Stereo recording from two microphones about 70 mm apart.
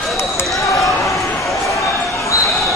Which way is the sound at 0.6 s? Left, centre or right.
Left.